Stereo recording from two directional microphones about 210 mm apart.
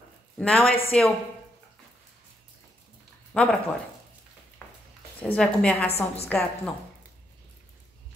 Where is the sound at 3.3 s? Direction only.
5° left (ahead or behind).